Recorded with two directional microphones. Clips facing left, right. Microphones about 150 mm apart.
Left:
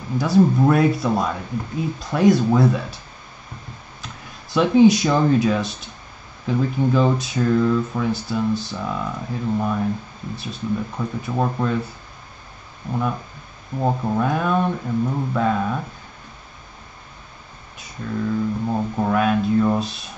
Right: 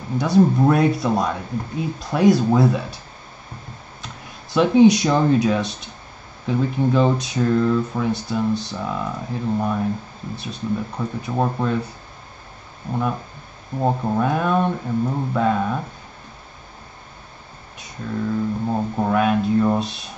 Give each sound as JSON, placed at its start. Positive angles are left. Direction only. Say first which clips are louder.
{"t": 0.6, "sound": "speech", "louder": "even", "side_deg": 0}
{"t": 4.0, "sound": "speech", "louder": "even", "side_deg": 0}
{"t": 12.9, "sound": "speech", "louder": "even", "side_deg": -35}
{"t": 13.7, "sound": "speech", "louder": "right 1 dB", "side_deg": -10}
{"t": 18.0, "sound": "speech", "louder": "even", "side_deg": -5}